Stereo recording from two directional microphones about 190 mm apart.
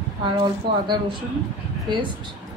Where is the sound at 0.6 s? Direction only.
25° right (ahead or behind).